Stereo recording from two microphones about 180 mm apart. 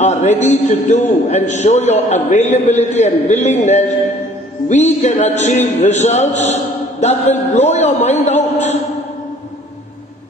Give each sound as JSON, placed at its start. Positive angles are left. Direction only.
{"t": 0.0, "sound": "speech", "side_deg": 40}